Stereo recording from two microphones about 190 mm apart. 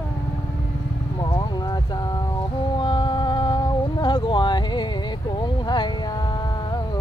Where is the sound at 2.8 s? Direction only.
25° left (ahead or behind).